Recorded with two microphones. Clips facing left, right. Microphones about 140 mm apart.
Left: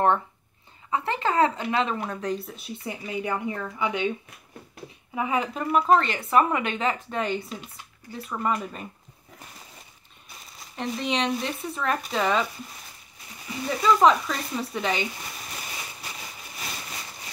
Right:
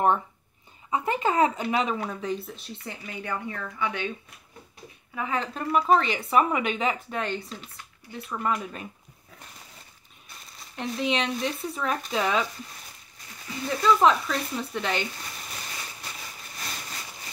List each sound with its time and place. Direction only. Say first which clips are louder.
0.8 s speech: right 1 dB; 15° right (ahead or behind)
1.7 s speech: even; 5° right (ahead or behind); by 4.1 s 15° left (ahead or behind)
5.1 s speech: left 3 dB; 15° left (ahead or behind); by 7.2 s 5° right (ahead or behind)
7.2 s speech: left 3 dB; 10° left (ahead or behind)
10.8 s speech: even; centre (ahead or behind)
13.5 s speech: even; 5° left (ahead or behind)